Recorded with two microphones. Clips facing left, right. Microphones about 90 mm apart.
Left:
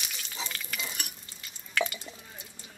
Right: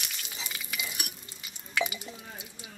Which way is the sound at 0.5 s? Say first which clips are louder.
Even; 10° right (ahead or behind).